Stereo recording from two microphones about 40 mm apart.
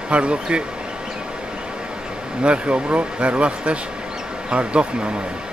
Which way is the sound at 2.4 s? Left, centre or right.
Right.